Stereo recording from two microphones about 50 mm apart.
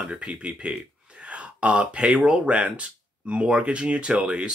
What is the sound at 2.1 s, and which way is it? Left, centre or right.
Speech, centre.